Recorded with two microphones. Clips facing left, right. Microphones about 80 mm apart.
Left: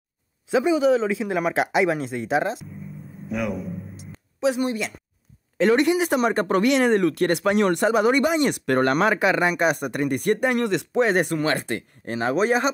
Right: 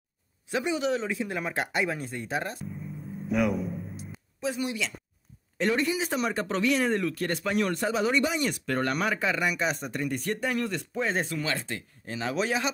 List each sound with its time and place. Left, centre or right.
1.2 s speech: left
3.3 s a man's voice: centre
4.6 s speech: left
5.6 s speech: left
8.0 s speech: left